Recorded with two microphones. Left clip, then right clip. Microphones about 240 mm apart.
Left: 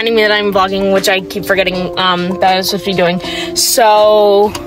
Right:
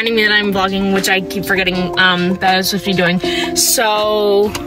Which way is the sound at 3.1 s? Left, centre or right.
Centre.